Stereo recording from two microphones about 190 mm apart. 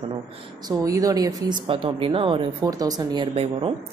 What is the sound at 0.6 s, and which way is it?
Speech, 20° right (ahead or behind).